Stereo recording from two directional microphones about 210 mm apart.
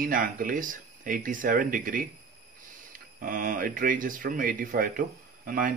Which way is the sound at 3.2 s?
40° right (ahead or behind).